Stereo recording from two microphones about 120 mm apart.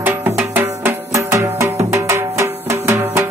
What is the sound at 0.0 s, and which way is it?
Music, 20° right (ahead or behind).